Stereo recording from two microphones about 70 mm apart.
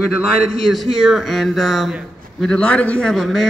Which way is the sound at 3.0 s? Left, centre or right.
Centre.